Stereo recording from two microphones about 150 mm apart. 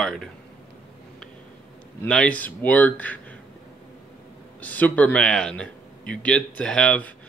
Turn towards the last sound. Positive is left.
turn(degrees=10)  # may be behind; listen again after turning